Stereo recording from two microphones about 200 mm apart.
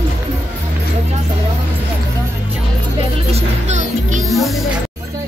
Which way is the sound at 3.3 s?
35° right (ahead or behind).